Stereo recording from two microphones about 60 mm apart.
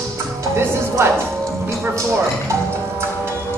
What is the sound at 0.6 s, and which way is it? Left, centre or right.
Music, right.